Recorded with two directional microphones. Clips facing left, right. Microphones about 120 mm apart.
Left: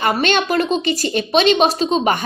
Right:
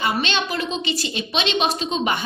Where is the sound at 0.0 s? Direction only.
50° left (ahead or behind).